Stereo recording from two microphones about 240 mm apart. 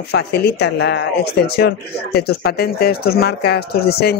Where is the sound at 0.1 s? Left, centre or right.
Left.